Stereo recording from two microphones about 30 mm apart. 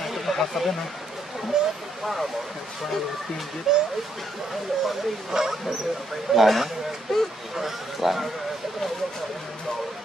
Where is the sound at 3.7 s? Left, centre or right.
Centre.